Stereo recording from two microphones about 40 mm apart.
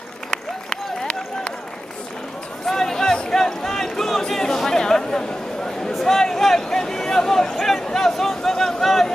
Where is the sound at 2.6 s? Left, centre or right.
Centre.